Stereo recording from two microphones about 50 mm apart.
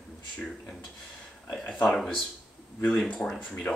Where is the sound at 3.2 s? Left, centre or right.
Centre.